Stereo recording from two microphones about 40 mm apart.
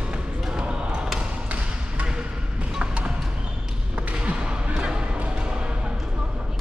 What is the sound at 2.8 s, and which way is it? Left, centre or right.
Basketball bounce, right.